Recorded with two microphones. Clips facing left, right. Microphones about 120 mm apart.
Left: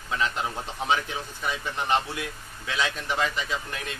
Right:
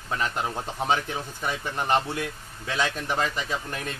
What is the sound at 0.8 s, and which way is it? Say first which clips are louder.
Speech: right 1 dB; 40° right (ahead or behind).